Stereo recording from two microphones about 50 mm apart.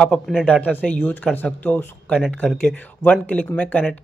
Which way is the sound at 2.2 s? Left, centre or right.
Left.